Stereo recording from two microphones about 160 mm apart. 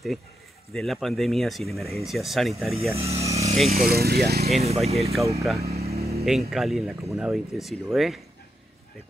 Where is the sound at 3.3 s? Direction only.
40° right (ahead or behind).